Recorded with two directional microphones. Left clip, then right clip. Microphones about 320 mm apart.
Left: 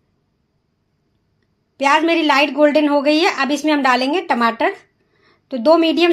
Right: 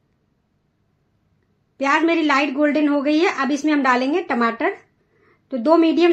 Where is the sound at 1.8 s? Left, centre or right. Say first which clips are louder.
Left 3 dB; centre.